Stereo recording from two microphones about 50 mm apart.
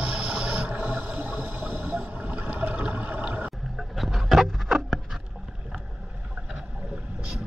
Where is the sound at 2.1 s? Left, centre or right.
Right.